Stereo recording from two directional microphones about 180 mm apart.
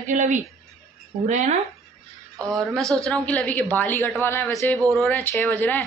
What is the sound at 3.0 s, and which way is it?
A woman's voice, 5° left (ahead or behind).